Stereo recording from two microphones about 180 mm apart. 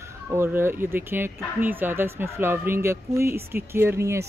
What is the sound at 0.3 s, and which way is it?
Speech, 15° right (ahead or behind).